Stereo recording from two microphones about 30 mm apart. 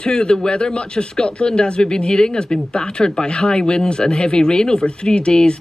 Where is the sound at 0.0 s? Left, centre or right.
Left.